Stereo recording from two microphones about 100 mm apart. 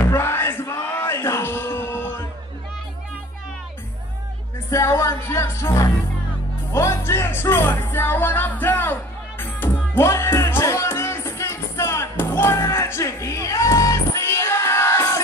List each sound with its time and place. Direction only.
0.1 s yell: 25° left (ahead or behind)
4.6 s speech: 30° left (ahead or behind)
9.4 s music: 25° left (ahead or behind)